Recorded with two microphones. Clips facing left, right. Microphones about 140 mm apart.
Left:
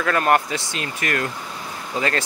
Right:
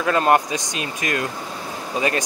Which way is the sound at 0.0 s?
20° right (ahead or behind).